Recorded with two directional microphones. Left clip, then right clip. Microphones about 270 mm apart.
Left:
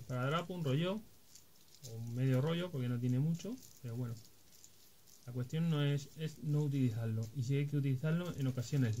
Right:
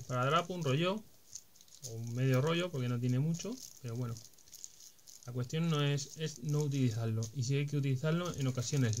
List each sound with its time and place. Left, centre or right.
0.1 s speech: centre
2.1 s speech: centre
5.2 s speech: centre